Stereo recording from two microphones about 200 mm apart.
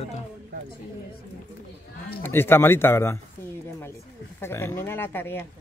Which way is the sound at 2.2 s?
10° left (ahead or behind).